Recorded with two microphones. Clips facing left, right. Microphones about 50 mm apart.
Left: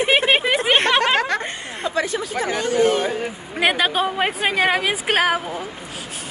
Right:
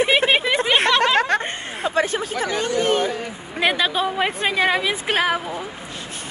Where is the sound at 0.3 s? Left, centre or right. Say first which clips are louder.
Left 1 dB; left.